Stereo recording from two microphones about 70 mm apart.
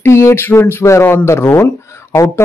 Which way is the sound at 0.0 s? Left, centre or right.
Left.